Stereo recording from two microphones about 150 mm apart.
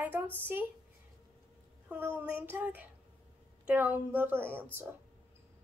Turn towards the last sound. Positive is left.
turn(degrees=-15)  # may be behind; listen again after turning